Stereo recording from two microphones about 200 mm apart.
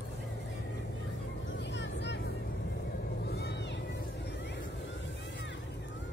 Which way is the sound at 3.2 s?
55° left (ahead or behind).